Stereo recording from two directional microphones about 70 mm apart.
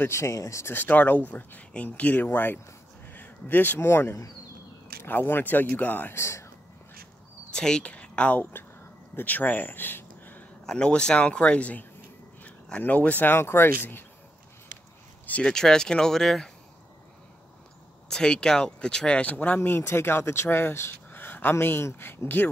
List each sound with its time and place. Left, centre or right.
0.1 s speech: left
0.7 s speech: left
6.1 s speech: left
7.5 s speech: centre; by 10.4 s left
10.6 s speech: centre; by 14.0 s left
15.4 s speech: centre
18.0 s speech: centre; by 22.5 s left